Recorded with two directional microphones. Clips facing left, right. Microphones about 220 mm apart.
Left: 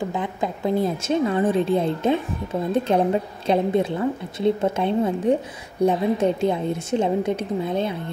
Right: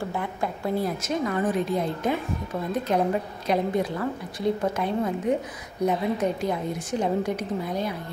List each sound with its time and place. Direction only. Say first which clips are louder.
0.0 s a woman's voice: left 3 dB; 20° left (ahead or behind)